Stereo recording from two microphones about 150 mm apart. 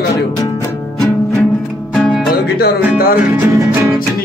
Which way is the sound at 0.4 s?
20° left (ahead or behind).